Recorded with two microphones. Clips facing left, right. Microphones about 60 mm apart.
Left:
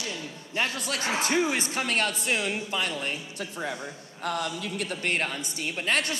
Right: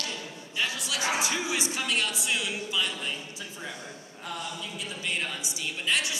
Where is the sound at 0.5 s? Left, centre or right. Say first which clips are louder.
Left 2 dB; left.